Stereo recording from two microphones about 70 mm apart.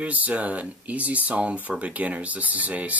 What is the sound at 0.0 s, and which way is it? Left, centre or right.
Speech, right.